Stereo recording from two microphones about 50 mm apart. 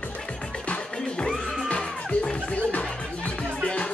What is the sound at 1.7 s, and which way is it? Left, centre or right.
Music, centre.